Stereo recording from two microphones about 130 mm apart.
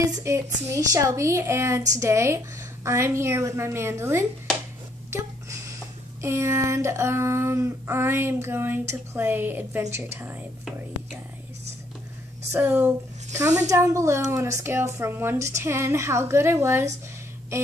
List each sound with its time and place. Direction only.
0.0 s a woman's voice: 25° right (ahead or behind)
6.2 s a woman's voice: 20° right (ahead or behind)
12.5 s speech: 10° right (ahead or behind)
13.7 s a woman's voice: 25° right (ahead or behind)